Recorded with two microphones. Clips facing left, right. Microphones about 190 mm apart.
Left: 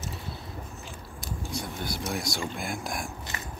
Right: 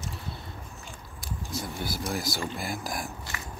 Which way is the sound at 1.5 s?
5° right (ahead or behind).